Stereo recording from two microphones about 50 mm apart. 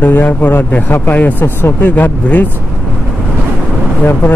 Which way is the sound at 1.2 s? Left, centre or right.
Left.